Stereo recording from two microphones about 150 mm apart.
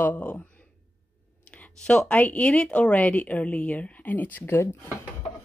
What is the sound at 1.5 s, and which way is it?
Speech, 5° left (ahead or behind).